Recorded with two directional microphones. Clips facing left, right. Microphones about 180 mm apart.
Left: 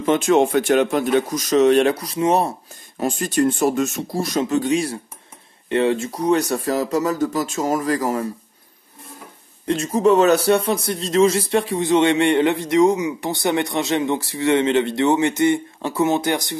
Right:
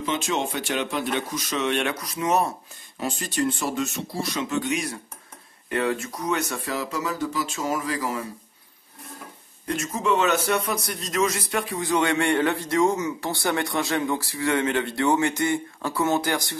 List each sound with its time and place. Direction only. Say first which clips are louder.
0.0 s speech: left 10 dB; 50° left (ahead or behind); by 2.5 s 30° left (ahead or behind)
3.0 s speech: left 7 dB; 50° left (ahead or behind)
9.7 s a man's voice: left 8 dB; 35° left (ahead or behind)